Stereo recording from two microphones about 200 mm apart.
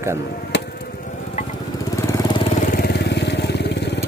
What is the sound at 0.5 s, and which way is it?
Chop, 60° left (ahead or behind).